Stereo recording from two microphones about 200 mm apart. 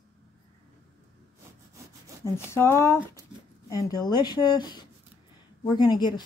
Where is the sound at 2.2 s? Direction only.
10° left (ahead or behind).